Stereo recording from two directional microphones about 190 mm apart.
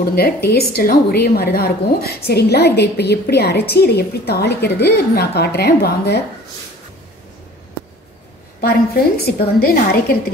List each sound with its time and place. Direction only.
0.1 s a woman's voice: 55° left (ahead or behind)
8.5 s a woman's voice: 55° left (ahead or behind)